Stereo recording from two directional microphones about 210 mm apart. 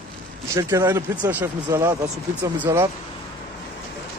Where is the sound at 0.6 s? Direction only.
10° right (ahead or behind).